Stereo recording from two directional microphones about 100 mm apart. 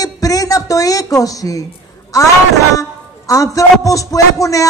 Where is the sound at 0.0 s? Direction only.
35° left (ahead or behind).